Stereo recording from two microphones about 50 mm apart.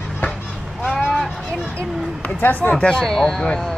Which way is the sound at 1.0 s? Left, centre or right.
Centre.